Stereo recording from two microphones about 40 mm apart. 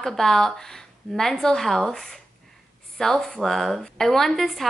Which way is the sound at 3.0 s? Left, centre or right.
Centre.